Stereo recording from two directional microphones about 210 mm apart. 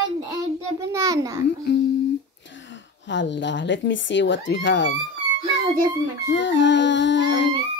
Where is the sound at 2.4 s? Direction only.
60° left (ahead or behind).